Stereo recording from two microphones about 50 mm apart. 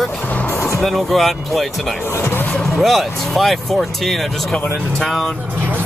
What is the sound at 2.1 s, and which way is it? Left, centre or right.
Speech, left.